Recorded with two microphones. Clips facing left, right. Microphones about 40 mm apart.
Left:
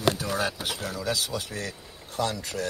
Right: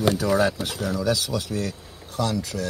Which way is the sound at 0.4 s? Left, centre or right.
Centre.